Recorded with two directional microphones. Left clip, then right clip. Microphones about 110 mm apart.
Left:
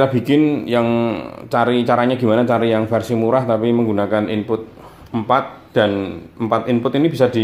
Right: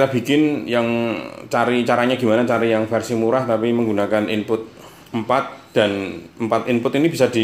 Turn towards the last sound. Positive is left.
turn(degrees=5)  # may be behind; listen again after turning